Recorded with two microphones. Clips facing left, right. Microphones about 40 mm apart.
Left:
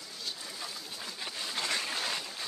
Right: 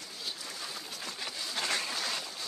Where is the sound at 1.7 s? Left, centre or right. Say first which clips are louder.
Even; centre.